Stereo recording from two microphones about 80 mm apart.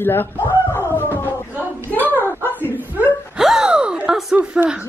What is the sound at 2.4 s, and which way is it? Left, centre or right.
Whimper, left.